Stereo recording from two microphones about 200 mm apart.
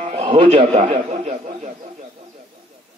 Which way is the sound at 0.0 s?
30° right (ahead or behind).